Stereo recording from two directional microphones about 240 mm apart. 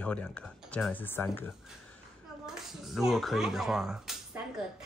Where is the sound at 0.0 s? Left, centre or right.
Centre.